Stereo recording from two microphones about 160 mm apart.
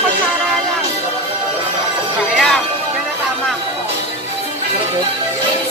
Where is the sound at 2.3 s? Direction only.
5° left (ahead or behind).